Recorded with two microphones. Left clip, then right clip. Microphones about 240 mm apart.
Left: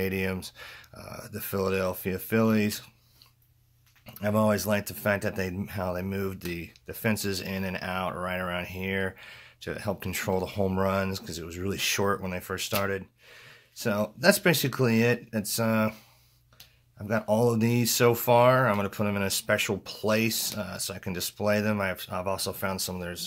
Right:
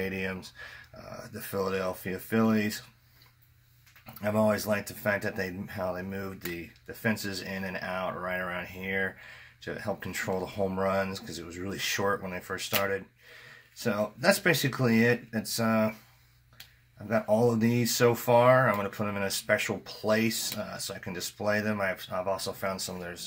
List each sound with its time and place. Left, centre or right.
0.0 s speech: left
4.0 s speech: left
17.1 s speech: left